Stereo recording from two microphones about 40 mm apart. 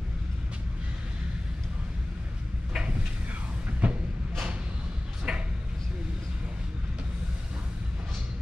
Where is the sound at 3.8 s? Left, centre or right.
Right.